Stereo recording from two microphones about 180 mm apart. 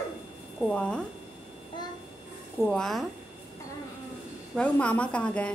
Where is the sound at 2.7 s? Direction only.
Centre (ahead or behind).